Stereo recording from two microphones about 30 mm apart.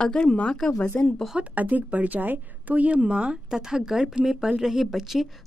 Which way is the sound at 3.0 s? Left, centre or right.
Right.